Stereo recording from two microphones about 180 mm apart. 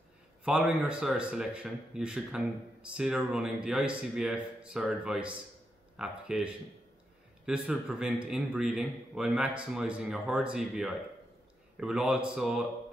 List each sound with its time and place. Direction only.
0.5 s speech: 5° right (ahead or behind)